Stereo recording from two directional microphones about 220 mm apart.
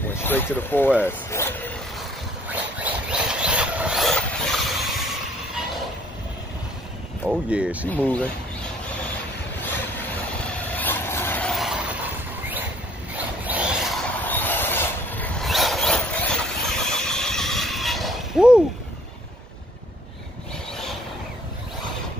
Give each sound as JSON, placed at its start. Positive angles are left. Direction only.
{"t": 0.1, "sound": "speech", "side_deg": 10}
{"t": 2.5, "sound": "a sound", "side_deg": -5}
{"t": 7.2, "sound": "speech", "side_deg": -5}
{"t": 7.8, "sound": "speech", "side_deg": 10}
{"t": 10.8, "sound": "vehicle", "side_deg": 10}
{"t": 13.1, "sound": "a sound", "side_deg": -5}
{"t": 14.2, "sound": "vehicle", "side_deg": 10}